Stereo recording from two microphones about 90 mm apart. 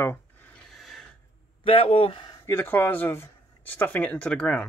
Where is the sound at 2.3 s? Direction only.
30° left (ahead or behind).